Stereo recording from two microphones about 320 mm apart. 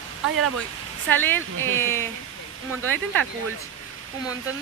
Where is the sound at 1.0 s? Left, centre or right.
Centre.